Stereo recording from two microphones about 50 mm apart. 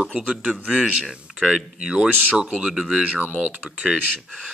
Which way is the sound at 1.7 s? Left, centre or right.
Centre.